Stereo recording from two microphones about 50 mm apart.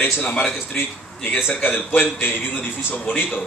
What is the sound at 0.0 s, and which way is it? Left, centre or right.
Speech, left.